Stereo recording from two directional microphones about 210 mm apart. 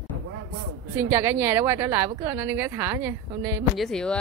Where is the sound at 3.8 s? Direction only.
5° left (ahead or behind).